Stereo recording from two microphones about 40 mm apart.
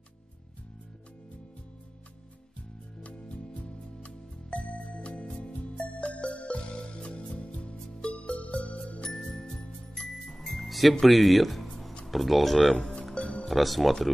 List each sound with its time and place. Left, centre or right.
3.0 s music: left
9.0 s music: centre
10.2 s music: centre
12.1 s speech: centre
13.1 s music: centre
13.5 s speech: centre